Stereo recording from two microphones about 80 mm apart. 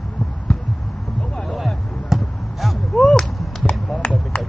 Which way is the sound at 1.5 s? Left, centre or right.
Centre.